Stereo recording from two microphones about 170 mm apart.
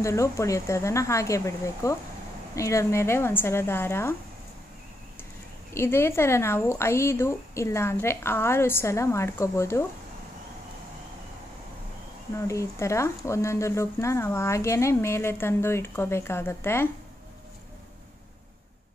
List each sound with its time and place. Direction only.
0.0 s speech: 15° left (ahead or behind)
5.7 s speech: 15° left (ahead or behind)
12.4 s speech: 15° left (ahead or behind)